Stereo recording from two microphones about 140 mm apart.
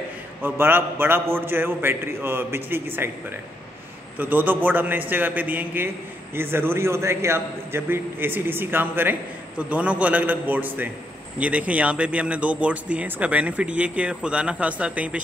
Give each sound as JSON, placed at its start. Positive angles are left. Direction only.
{"t": 0.4, "sound": "a man's voice", "side_deg": -15}